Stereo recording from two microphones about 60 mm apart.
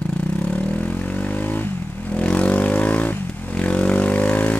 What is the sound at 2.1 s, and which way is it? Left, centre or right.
Vehicle, centre.